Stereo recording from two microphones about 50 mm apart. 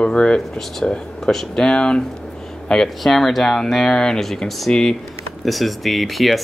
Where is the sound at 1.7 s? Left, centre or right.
Centre.